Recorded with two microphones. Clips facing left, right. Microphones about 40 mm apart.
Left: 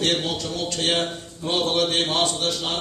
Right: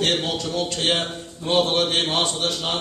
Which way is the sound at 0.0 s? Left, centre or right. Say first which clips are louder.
Right 1 dB; centre.